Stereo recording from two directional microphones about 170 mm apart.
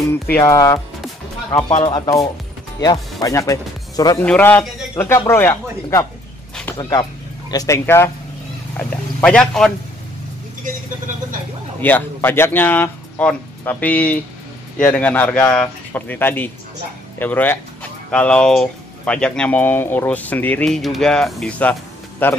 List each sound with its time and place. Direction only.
0.3 s speech: 20° left (ahead or behind)
1.8 s speech: 30° left (ahead or behind)
4.2 s speech: 10° left (ahead or behind)
11.8 s speech: 10° left (ahead or behind)